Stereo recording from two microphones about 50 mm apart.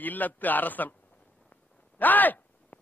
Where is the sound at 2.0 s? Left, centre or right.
Left.